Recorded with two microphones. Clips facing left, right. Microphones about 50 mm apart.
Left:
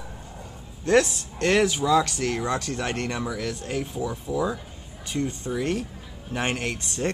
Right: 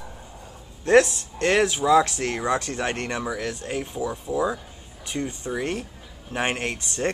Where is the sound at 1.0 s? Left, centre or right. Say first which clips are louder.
Right 1 dB; centre.